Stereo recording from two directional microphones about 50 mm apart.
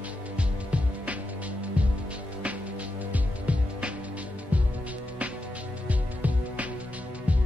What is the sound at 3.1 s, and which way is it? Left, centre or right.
Music, right.